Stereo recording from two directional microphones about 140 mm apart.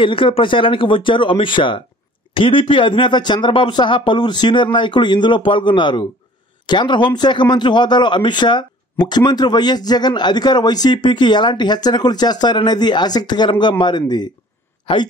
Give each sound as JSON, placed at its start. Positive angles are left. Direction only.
{"t": 0.0, "sound": "a man's voice", "side_deg": 40}